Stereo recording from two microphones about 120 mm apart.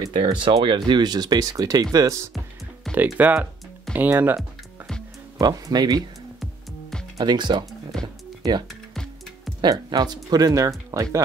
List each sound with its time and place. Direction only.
0.0 s speech: 40° right (ahead or behind)
2.9 s music: 5° left (ahead or behind)
3.2 s speech: 15° right (ahead or behind)
4.4 s music: 5° left (ahead or behind)
5.4 s speech: 35° right (ahead or behind)
7.2 s speech: 40° right (ahead or behind)
7.9 s music: 5° left (ahead or behind)
9.6 s speech: 35° right (ahead or behind)